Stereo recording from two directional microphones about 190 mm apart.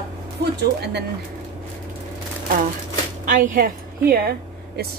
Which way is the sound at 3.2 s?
45° right (ahead or behind).